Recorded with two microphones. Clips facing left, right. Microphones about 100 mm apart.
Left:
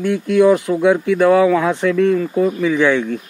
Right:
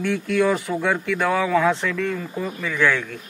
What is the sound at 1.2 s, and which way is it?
Speech, 10° left (ahead or behind).